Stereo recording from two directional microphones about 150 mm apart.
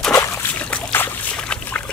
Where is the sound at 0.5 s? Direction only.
10° left (ahead or behind).